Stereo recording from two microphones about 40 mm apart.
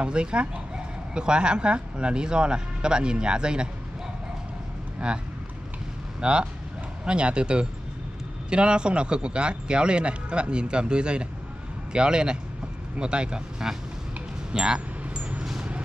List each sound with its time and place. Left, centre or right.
0.0 s speech: right
6.2 s speech: right
14.5 s a sound: centre